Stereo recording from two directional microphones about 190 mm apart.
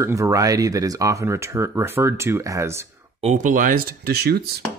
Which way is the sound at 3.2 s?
40° right (ahead or behind).